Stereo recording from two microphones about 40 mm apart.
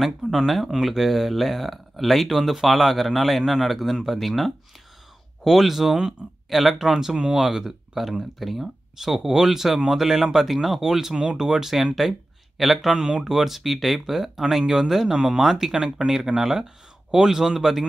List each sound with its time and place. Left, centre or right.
0.0 s speech: centre
6.2 s speech: right
6.5 s speech: centre
12.9 s speech: centre
13.2 s speech: centre